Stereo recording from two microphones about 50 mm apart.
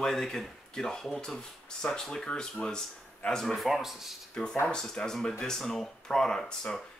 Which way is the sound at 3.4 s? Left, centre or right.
Centre.